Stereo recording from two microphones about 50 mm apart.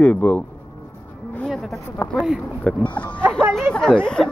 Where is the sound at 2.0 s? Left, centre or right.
Left.